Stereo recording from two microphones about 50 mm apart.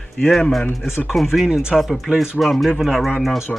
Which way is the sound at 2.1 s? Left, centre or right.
Centre.